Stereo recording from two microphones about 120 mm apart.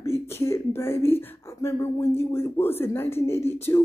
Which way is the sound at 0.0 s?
20° left (ahead or behind).